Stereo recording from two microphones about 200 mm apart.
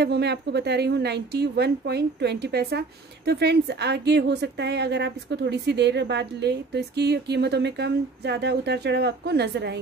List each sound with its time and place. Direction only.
0.0 s a woman's voice: 55° right (ahead or behind)